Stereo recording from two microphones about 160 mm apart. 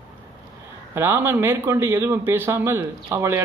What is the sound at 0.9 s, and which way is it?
A man's voice, 15° right (ahead or behind).